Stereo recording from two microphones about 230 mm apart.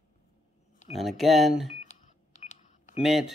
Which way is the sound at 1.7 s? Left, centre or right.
Left.